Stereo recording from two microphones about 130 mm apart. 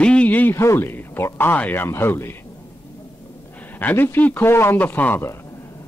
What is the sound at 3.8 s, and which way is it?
Speech, 15° left (ahead or behind).